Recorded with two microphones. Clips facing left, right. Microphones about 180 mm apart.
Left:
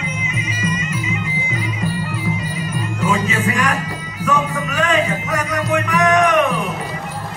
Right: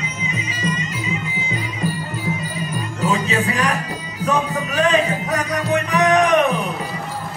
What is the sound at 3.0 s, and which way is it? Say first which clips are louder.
Music: even; 35° right (ahead or behind).